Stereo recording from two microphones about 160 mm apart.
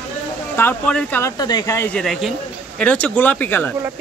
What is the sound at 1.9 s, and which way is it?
Speech, 5° left (ahead or behind).